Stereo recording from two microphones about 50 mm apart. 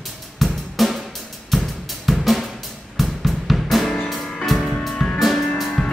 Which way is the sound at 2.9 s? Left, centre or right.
Centre.